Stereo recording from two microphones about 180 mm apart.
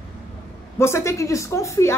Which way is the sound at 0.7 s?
15° left (ahead or behind).